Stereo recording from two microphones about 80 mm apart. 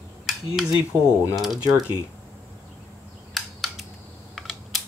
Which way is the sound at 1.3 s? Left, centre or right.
Centre.